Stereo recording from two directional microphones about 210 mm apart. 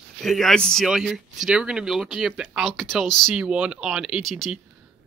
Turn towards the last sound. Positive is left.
turn(degrees=0)  # may be behind; listen again after turning